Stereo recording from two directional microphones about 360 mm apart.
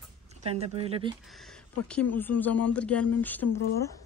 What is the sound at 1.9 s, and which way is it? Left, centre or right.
Speech, centre.